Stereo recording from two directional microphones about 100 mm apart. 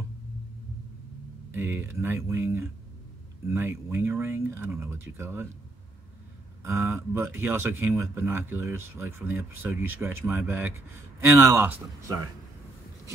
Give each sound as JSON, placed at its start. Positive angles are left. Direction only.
{"t": 1.5, "sound": "speech", "side_deg": -25}
{"t": 6.6, "sound": "speech", "side_deg": -25}